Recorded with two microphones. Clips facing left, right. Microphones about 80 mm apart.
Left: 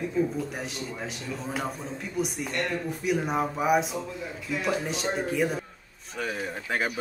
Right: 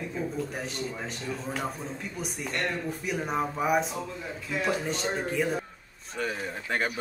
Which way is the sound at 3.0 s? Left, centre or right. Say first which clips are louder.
Left 4 dB; centre.